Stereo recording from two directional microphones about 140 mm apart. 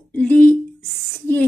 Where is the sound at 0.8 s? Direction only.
Centre (ahead or behind).